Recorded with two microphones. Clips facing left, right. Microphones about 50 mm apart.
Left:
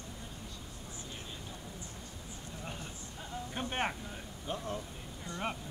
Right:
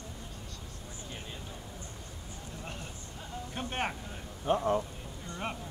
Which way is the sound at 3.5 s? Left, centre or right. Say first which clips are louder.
Right 1 dB; centre.